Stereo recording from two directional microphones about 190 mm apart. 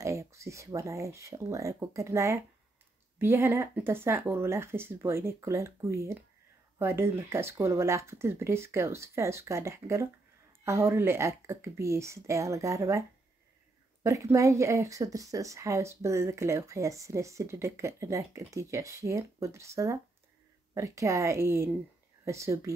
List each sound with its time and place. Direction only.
0.0 s speech: 15° right (ahead or behind)
14.0 s speech: 15° right (ahead or behind)